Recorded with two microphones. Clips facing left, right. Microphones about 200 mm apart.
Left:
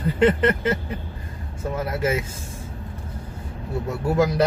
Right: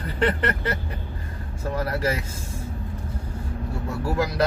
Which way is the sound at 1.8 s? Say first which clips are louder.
Left 1 dB; 20° left (ahead or behind).